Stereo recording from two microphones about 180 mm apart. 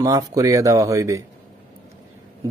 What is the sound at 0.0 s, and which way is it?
Mantra, 20° right (ahead or behind).